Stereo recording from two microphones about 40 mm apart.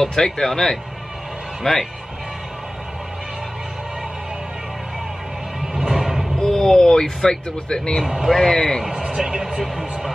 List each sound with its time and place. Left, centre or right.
0.0 s speech: centre
5.6 s music: centre
6.3 s speech: centre
8.0 s a man's voice: centre
8.4 s speech: centre
9.0 s speech: centre
9.6 s speech: centre